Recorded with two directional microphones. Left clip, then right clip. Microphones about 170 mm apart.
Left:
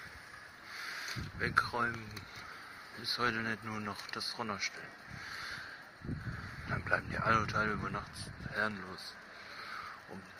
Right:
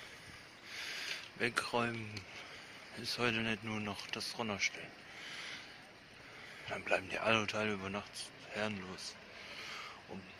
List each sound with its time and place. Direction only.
0.7 s a sound: 20° right (ahead or behind)
3.0 s speech: 15° right (ahead or behind)
6.7 s speech: 20° right (ahead or behind)